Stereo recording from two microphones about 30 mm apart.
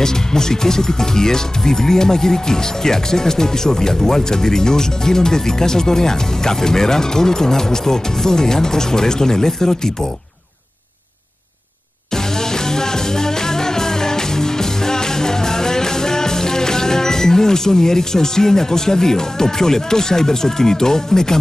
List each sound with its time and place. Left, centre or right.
0.0 s speech: centre
12.4 s music: centre